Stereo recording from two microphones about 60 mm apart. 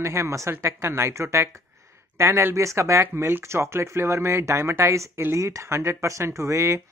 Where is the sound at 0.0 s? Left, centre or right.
Right.